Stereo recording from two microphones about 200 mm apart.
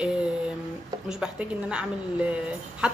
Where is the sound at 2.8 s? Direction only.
5° right (ahead or behind).